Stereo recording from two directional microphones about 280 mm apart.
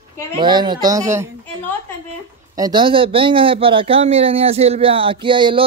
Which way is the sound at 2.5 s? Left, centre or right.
Centre.